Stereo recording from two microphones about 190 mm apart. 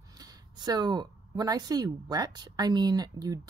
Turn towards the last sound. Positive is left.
turn(degrees=-20)  # may be behind; listen again after turning